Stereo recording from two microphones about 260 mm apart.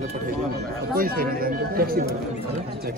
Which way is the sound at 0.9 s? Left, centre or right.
Right.